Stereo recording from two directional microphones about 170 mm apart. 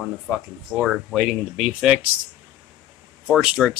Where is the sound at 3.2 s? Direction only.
Centre (ahead or behind).